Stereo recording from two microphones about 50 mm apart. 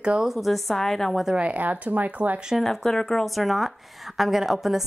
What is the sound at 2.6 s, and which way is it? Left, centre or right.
Speech, centre.